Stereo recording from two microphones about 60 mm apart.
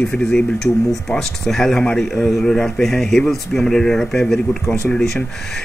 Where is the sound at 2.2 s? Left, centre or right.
Centre.